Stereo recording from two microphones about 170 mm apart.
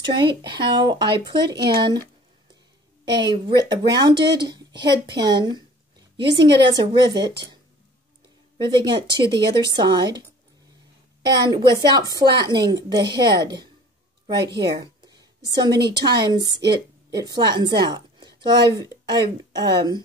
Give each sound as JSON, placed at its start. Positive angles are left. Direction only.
{"t": 0.0, "sound": "speech", "side_deg": -25}
{"t": 3.1, "sound": "speech", "side_deg": -25}
{"t": 8.6, "sound": "speech", "side_deg": -25}
{"t": 11.2, "sound": "a woman's voice", "side_deg": -25}